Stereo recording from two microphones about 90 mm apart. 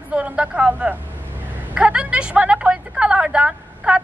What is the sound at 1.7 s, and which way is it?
A woman's voice, 15° right (ahead or behind).